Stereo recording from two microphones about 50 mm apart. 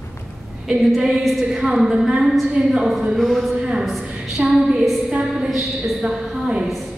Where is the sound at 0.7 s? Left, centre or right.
Centre.